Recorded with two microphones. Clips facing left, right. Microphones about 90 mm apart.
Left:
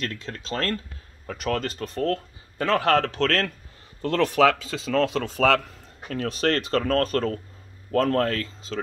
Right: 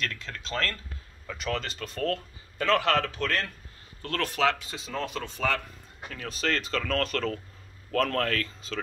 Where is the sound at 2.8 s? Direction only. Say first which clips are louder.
Left 5 dB; 55° left (ahead or behind); by 3.5 s 85° left.